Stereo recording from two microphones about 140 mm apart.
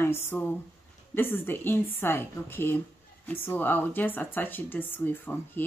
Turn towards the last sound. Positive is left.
turn(degrees=15)  # may be behind; listen again after turning